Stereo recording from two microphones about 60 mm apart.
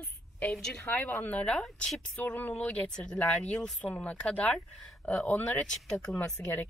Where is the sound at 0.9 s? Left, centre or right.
Left; by 3.7 s centre.